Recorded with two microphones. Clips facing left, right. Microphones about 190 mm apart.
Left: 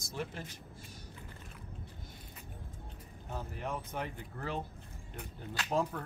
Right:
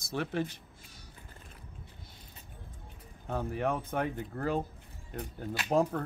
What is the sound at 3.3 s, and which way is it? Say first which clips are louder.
Speech: right 8 dB; 60° right (ahead or behind).